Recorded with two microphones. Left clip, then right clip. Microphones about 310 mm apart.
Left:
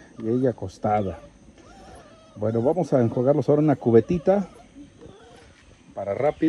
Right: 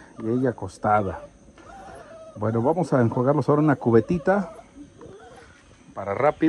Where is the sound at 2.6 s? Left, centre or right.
Right.